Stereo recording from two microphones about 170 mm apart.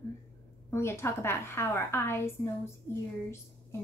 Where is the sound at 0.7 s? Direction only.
15° left (ahead or behind).